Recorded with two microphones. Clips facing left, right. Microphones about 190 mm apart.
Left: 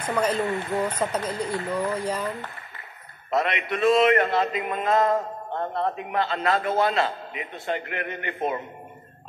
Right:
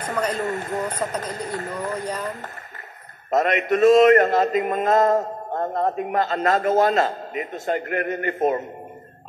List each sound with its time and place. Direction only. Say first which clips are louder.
0.4 s a man's voice: even; 45° right (ahead or behind)
2.0 s speech: left 1 dB; 10° left (ahead or behind)
3.3 s a man's voice: right 5 dB; 45° right (ahead or behind)